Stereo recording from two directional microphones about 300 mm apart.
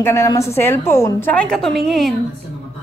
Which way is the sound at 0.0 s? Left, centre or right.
Centre.